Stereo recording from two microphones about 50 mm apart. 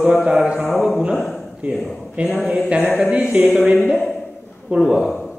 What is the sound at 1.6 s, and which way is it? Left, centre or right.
Speech, right.